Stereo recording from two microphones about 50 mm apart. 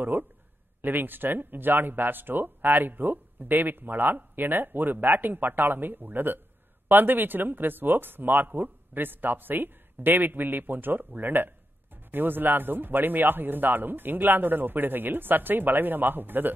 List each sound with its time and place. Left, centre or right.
0.0 s speech: right